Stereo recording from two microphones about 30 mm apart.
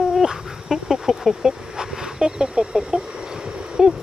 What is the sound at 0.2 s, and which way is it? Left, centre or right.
Dog, centre.